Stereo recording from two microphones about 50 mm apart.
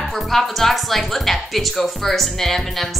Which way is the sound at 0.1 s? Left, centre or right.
Centre.